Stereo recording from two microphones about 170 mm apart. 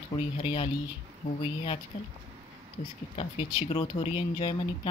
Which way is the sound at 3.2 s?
35° left (ahead or behind).